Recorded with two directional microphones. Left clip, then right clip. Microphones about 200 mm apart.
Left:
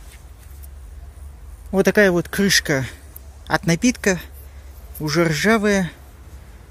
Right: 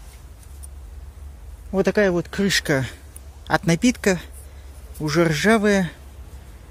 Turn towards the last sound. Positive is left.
turn(degrees=0)  # may be behind; listen again after turning